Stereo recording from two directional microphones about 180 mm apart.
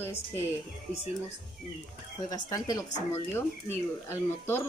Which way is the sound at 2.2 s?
20° left (ahead or behind).